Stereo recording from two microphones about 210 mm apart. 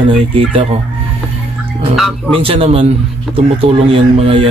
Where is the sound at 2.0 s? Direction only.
Centre (ahead or behind).